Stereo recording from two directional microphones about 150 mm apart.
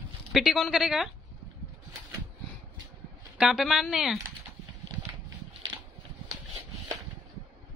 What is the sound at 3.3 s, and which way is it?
Speech, 5° right (ahead or behind).